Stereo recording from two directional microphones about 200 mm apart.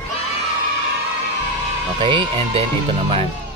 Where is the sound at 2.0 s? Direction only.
25° right (ahead or behind).